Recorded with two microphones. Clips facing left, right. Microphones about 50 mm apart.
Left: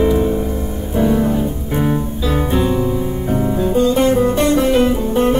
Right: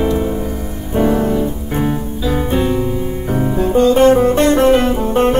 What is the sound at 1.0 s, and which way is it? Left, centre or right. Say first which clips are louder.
Music: right 1 dB; right.